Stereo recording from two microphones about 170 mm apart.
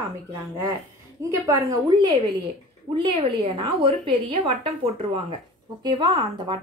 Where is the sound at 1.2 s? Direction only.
15° right (ahead or behind).